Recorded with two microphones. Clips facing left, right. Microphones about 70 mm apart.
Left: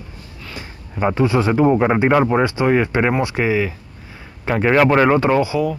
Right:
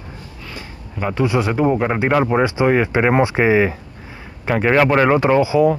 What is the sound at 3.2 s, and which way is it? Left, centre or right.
Speech, right.